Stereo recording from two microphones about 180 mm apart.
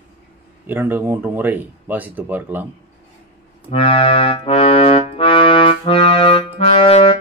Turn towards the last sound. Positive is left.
turn(degrees=30)  # may be behind; listen again after turning